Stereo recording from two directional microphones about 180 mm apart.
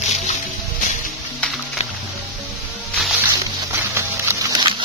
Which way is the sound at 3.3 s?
15° right (ahead or behind).